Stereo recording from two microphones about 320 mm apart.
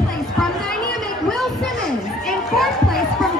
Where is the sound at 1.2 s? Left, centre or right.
Centre.